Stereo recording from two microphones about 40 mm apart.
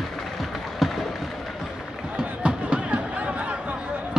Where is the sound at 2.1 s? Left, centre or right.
Right.